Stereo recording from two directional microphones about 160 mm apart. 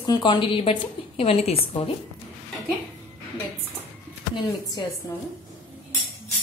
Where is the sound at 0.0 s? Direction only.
25° left (ahead or behind).